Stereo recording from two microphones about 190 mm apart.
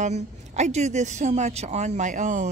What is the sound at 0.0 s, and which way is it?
Speech, 35° right (ahead or behind).